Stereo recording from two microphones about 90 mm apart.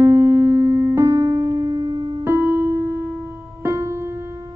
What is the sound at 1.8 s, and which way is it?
Music, 50° right (ahead or behind).